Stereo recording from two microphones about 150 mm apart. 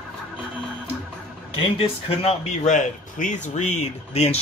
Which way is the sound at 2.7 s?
55° left (ahead or behind).